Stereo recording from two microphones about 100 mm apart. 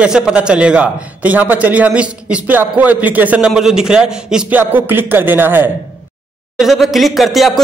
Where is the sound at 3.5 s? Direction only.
5° right (ahead or behind).